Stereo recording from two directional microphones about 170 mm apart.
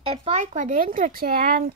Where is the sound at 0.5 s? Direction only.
50° right (ahead or behind).